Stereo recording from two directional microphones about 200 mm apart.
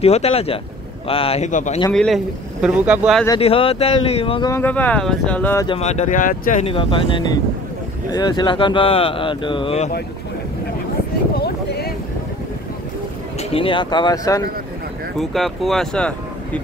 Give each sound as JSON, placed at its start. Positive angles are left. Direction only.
{"t": 0.0, "sound": "speech", "side_deg": 30}
{"t": 1.9, "sound": "speech", "side_deg": 0}
{"t": 3.3, "sound": "speech", "side_deg": 30}
{"t": 4.5, "sound": "speech", "side_deg": 10}
{"t": 5.7, "sound": "speech", "side_deg": 35}
{"t": 6.6, "sound": "speech", "side_deg": 25}
{"t": 11.3, "sound": "a sound", "side_deg": 50}
{"t": 13.4, "sound": "speech", "side_deg": 30}
{"t": 15.1, "sound": "speech", "side_deg": 0}